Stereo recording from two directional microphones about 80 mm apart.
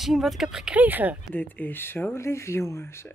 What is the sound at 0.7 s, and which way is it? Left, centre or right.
Speech, right.